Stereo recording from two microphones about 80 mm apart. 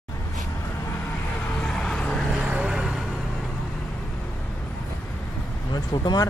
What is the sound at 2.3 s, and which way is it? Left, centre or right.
Vehicle, centre.